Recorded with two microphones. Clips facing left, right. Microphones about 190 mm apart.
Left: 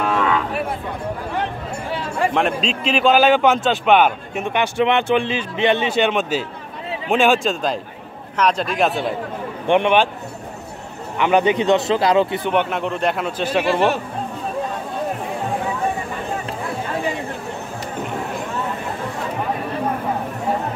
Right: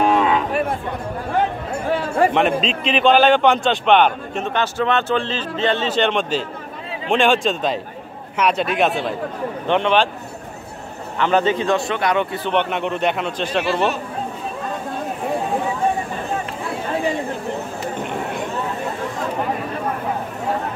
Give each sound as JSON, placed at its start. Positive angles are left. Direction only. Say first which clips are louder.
{"t": 0.1, "sound": "cattle", "louder": "right 2 dB", "side_deg": -20}
{"t": 1.9, "sound": "a sound", "louder": "right 6 dB", "side_deg": -50}
{"t": 2.3, "sound": "a man's voice", "louder": "right 2 dB", "side_deg": 0}
{"t": 9.7, "sound": "a man's voice", "louder": "left 2 dB", "side_deg": 15}
{"t": 11.1, "sound": "speech", "louder": "left 1 dB", "side_deg": 15}
{"t": 12.4, "sound": "a man's voice", "louder": "even", "side_deg": 5}